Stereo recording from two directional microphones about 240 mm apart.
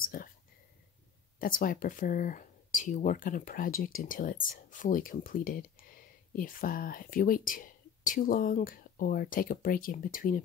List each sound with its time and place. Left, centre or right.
0.0 s whispering: left
1.4 s speech: left